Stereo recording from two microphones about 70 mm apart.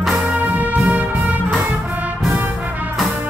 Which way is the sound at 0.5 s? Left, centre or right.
Right.